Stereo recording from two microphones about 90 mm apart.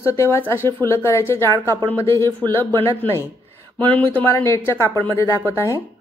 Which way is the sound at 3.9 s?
20° left (ahead or behind).